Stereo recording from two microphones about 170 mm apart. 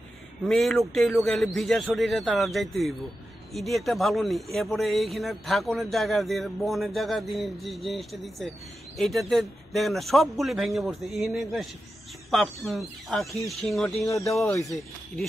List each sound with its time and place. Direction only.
0.5 s speech: centre (ahead or behind)
14.3 s speech: 15° left (ahead or behind)